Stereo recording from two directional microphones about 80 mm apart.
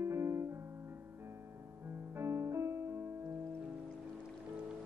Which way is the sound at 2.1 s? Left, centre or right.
Right.